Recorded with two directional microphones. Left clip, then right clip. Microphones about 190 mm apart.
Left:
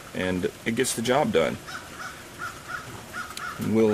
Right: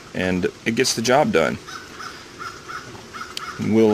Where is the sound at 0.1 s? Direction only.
40° right (ahead or behind).